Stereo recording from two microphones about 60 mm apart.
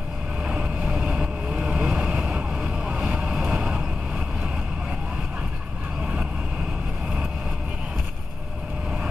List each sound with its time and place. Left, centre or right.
0.5 s vehicle: centre